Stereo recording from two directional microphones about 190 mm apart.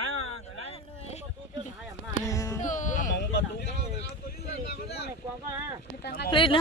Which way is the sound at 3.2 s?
60° left (ahead or behind).